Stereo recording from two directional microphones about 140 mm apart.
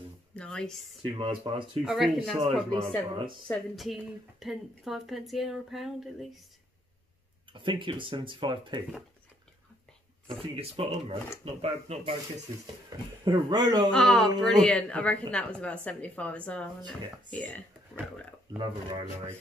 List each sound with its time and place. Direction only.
0.4 s speech: 5° left (ahead or behind)
1.0 s speech: 35° right (ahead or behind)
1.9 s speech: 5° right (ahead or behind)
7.5 s speech: 35° right (ahead or behind)
10.2 s speech: 45° right (ahead or behind)
13.2 s speech: 30° right (ahead or behind)
13.8 s speech: 5° left (ahead or behind)
18.6 s speech: 35° right (ahead or behind)